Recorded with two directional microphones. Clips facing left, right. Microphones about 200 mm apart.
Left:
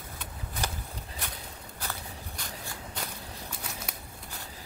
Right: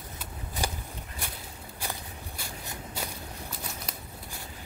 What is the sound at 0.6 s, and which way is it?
Walk, 10° right (ahead or behind).